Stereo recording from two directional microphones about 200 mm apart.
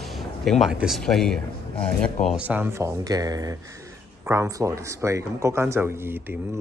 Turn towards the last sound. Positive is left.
turn(degrees=-10)  # may be behind; listen again after turning